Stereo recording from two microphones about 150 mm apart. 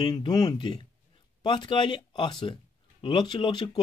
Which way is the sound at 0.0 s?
30° left (ahead or behind).